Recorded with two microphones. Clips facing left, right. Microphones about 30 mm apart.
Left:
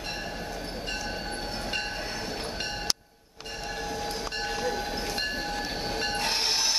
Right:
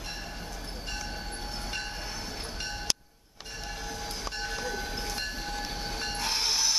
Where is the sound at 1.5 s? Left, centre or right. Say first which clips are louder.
Left 4 dB; left.